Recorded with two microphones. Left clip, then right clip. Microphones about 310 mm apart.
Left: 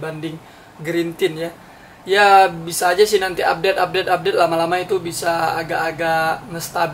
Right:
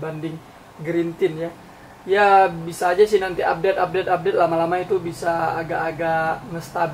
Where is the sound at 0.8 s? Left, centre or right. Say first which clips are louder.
Left 2 dB; centre.